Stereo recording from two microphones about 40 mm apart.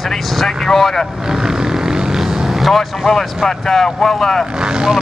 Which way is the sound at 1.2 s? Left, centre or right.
Centre.